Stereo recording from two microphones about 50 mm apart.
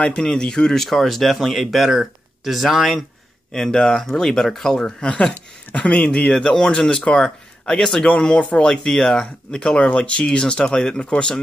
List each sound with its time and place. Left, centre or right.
0.0 s speech: centre
3.5 s speech: centre
5.1 s speech: left
6.3 s speech: centre